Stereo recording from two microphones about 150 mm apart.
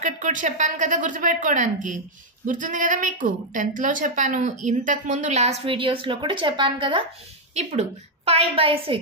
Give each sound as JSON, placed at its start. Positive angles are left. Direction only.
{"t": 0.0, "sound": "a woman's voice", "side_deg": -60}
{"t": 8.3, "sound": "a woman's voice", "side_deg": -40}